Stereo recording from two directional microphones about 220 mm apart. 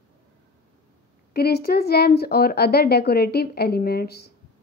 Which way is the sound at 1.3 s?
45° left (ahead or behind).